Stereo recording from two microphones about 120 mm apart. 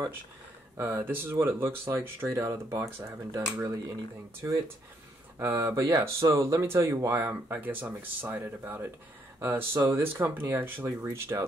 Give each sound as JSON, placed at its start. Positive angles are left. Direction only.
{"t": 0.7, "sound": "speech", "side_deg": -20}